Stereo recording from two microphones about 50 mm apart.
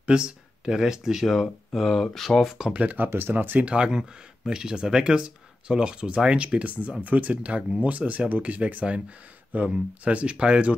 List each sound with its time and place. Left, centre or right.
0.0 s speech: centre
2.7 s speech: right
3.1 s speech: right
3.5 s speech: right